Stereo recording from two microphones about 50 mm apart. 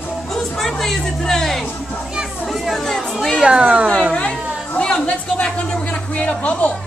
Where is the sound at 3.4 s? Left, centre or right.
Centre.